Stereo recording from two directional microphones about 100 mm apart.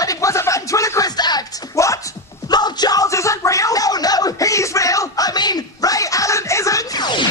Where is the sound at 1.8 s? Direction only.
30° left (ahead or behind).